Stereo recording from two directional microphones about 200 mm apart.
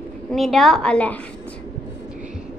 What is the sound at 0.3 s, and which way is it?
Speech, centre (ahead or behind).